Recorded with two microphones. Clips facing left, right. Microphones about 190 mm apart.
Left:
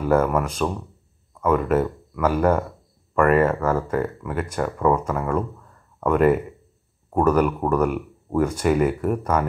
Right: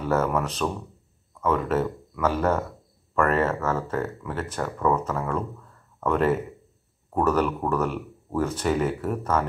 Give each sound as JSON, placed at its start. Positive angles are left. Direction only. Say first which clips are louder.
{"t": 0.0, "sound": "speech", "louder": "left 4 dB", "side_deg": 10}